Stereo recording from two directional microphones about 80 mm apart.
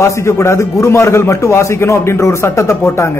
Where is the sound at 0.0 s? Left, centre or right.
Left.